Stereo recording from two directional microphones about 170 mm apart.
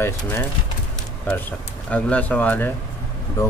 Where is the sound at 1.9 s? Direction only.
10° left (ahead or behind).